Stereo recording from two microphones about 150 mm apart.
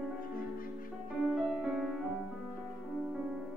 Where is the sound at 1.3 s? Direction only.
Centre (ahead or behind).